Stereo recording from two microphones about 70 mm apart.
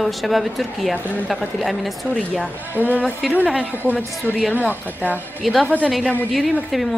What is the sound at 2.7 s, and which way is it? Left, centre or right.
Speech, right.